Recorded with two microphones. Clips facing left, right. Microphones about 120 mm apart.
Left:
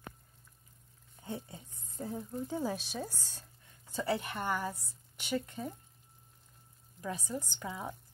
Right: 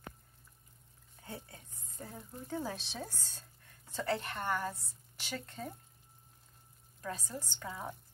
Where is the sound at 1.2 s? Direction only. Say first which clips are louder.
Left 5 dB; 20° left (ahead or behind).